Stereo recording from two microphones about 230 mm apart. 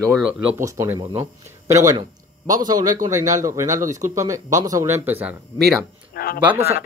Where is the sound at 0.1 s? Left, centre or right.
Centre.